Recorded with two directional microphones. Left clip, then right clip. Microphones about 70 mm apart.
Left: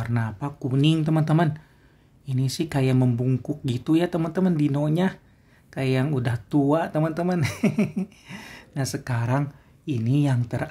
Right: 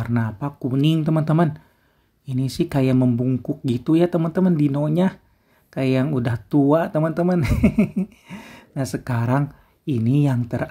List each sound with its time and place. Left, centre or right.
0.0 s speech: right
2.2 s speech: right
9.8 s speech: right
10.1 s speech: right